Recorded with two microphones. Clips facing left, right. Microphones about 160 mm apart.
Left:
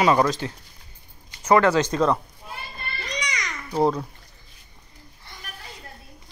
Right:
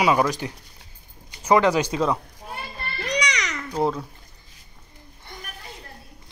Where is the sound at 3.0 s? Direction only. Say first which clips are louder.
Right 6 dB; 75° right (ahead or behind).